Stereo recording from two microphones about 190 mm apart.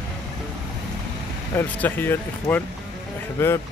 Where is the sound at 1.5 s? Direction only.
10° left (ahead or behind).